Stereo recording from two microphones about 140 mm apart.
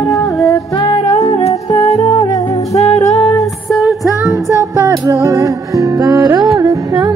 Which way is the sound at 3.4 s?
Centre (ahead or behind).